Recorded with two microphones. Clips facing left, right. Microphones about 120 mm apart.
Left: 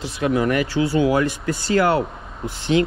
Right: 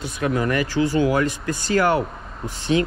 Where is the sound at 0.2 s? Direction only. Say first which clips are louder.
Left 2 dB; 20° left (ahead or behind).